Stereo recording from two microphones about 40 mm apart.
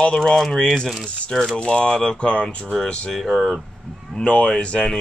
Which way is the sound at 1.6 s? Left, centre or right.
Left.